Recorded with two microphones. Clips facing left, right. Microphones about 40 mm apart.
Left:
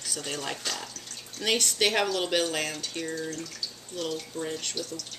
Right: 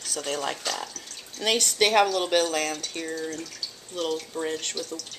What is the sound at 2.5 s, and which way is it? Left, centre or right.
Speech, centre.